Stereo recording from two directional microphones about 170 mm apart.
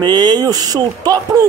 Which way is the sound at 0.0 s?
25° right (ahead or behind).